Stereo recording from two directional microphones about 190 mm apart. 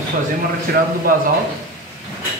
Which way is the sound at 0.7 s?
50° right (ahead or behind).